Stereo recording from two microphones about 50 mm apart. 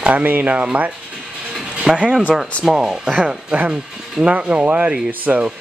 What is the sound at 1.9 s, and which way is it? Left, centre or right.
Rub, centre.